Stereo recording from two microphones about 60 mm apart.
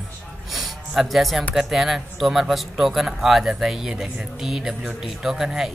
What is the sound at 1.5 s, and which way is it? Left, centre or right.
Speech, centre.